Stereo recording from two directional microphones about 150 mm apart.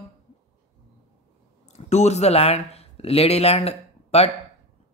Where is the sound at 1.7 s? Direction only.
50° left (ahead or behind).